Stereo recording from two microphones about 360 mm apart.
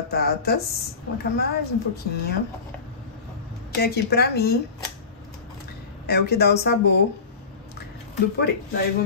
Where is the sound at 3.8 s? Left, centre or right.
Left.